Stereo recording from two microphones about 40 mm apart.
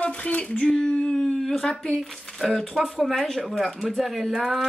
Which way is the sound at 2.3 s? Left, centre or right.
Centre.